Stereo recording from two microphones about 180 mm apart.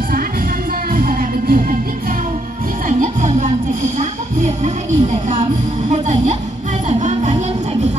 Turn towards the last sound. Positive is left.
turn(degrees=-45)  # may be behind; listen again after turning